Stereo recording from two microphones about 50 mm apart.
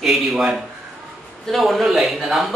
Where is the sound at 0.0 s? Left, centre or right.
Centre.